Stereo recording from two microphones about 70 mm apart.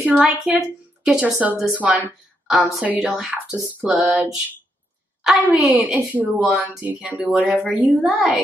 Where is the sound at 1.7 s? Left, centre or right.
Centre.